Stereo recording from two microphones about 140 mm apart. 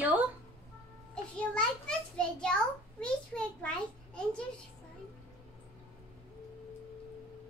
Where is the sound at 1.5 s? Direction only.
5° left (ahead or behind).